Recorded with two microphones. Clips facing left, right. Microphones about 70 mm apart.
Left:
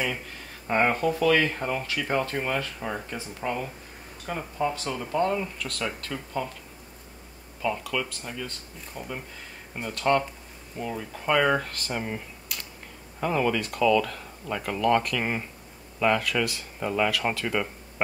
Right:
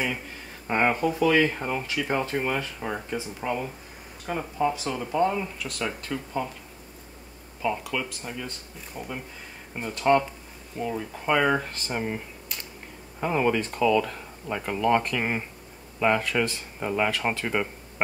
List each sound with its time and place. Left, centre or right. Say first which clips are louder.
0.7 s speech: even; centre
7.6 s speech: even; centre
8.9 s speech: right 1 dB; centre
10.8 s speech: right 3 dB; centre
13.2 s speech: right 1 dB; right